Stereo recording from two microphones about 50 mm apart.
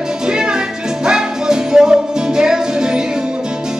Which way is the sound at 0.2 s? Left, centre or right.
Centre.